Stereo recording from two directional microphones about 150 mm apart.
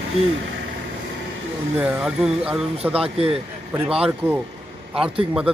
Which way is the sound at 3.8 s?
5° right (ahead or behind).